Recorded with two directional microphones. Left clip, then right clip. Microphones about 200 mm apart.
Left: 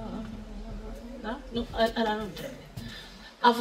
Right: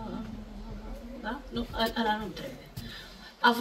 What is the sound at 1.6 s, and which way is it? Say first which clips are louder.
Speech: left 4 dB; 25° right (ahead or behind).